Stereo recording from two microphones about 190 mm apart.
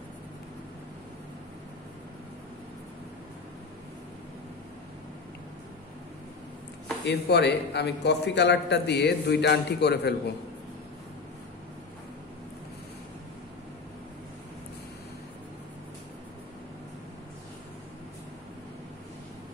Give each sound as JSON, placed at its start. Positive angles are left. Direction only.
{"t": 7.1, "sound": "a man's voice", "side_deg": 60}